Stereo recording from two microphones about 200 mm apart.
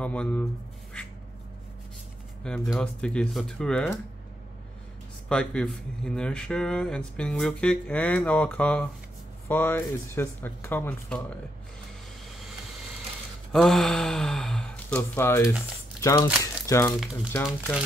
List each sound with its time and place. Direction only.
0.0 s speech: 5° left (ahead or behind)
2.4 s speech: centre (ahead or behind)
5.3 s speech: 5° left (ahead or behind)
13.5 s speech: centre (ahead or behind)
16.3 s speech: 5° right (ahead or behind)
16.6 s speech: 15° left (ahead or behind)
17.5 s speech: centre (ahead or behind)